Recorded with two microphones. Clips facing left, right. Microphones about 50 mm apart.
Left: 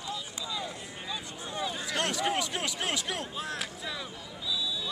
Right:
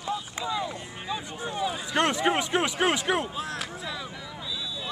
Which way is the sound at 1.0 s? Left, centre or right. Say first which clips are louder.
Right 7 dB; right.